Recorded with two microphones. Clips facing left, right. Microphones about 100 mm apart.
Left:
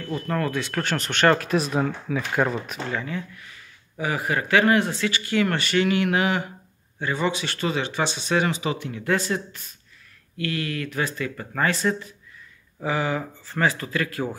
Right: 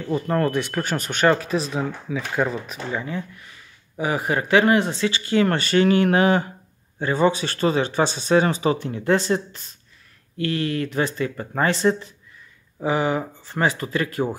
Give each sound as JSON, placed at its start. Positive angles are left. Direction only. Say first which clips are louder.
{"t": 0.0, "sound": "speech", "louder": "right 5 dB", "side_deg": -25}
{"t": 0.7, "sound": "speech", "louder": "right 1 dB", "side_deg": -10}